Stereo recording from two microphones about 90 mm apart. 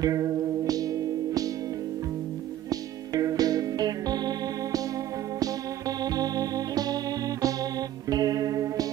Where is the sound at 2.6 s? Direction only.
40° right (ahead or behind).